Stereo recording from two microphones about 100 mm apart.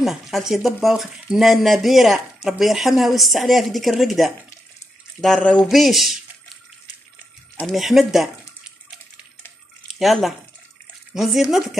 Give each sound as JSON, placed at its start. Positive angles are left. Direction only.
{"t": 0.0, "sound": "speech", "side_deg": -5}
{"t": 5.2, "sound": "pour", "side_deg": 5}
{"t": 5.7, "sound": "speech", "side_deg": 0}
{"t": 7.6, "sound": "speech", "side_deg": 0}
{"t": 9.8, "sound": "speech", "side_deg": 0}